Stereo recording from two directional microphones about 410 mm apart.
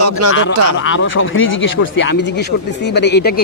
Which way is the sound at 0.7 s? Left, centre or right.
Left.